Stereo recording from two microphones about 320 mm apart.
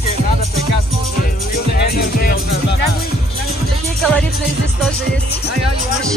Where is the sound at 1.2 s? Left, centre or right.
Left.